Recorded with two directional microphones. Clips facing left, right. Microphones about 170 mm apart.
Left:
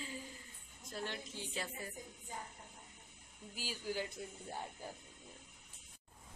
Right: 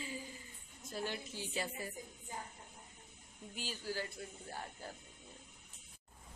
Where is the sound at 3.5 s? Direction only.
15° left (ahead or behind).